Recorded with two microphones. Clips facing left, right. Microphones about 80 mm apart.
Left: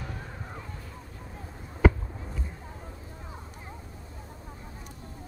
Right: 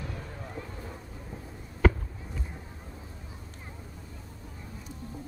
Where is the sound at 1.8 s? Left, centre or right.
Centre.